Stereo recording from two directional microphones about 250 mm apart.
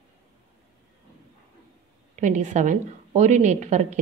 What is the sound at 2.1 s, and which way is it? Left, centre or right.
A woman's voice, right.